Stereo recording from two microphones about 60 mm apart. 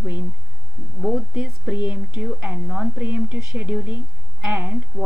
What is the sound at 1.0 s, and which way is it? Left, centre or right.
Speech, centre.